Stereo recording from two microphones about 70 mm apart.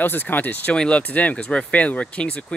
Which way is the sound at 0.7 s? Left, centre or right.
Centre.